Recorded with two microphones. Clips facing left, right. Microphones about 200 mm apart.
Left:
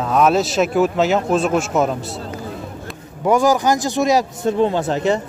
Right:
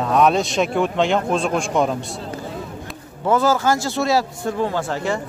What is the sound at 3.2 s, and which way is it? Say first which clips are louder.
Speech: left 2 dB; 15° left (ahead or behind).